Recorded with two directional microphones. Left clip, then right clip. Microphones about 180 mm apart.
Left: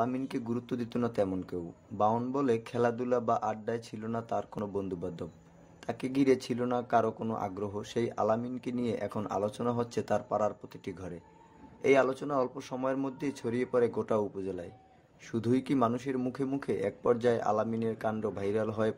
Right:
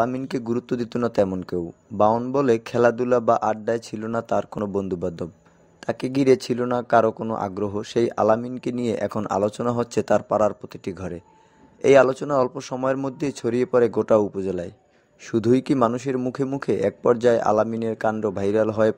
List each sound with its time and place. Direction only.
0.0 s a man's voice: 45° right (ahead or behind)